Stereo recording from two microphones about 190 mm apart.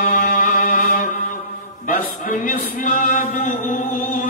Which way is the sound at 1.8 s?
45° left (ahead or behind).